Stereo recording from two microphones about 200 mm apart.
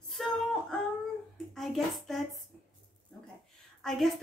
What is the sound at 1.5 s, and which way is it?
Speech, centre (ahead or behind).